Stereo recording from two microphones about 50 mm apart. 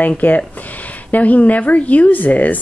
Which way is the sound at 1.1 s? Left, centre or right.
Left.